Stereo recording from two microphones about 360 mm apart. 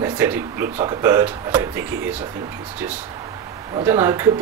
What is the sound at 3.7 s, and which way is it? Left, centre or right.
Speech, centre.